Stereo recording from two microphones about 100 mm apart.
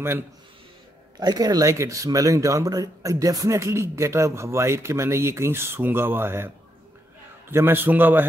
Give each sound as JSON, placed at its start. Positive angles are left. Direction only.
{"t": 1.2, "sound": "speech", "side_deg": -40}